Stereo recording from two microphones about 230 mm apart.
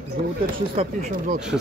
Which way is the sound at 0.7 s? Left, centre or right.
Right.